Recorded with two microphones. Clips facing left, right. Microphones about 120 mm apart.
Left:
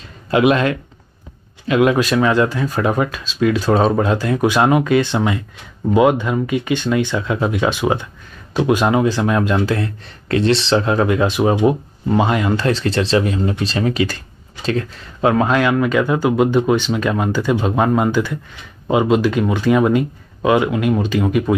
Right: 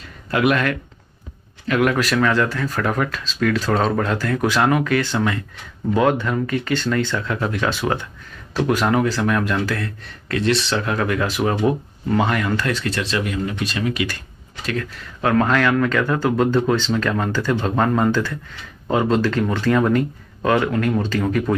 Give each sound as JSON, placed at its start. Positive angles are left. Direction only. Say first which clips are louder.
{"t": 0.3, "sound": "speech", "louder": "left 4 dB", "side_deg": 20}
{"t": 15.3, "sound": "speech", "louder": "right 1 dB", "side_deg": 15}